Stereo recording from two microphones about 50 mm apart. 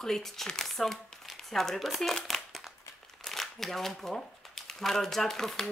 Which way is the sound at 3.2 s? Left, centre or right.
Centre.